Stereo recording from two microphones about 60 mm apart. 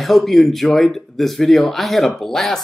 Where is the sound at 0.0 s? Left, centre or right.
Centre.